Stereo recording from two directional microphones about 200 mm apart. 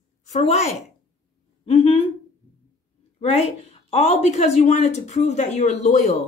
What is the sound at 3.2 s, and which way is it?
Speech, 30° left (ahead or behind).